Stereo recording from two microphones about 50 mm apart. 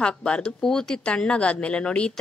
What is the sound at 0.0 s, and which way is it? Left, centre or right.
Speech, left.